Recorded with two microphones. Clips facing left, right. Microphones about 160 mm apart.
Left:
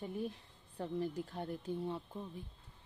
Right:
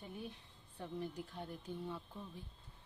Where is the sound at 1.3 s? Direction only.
35° left (ahead or behind).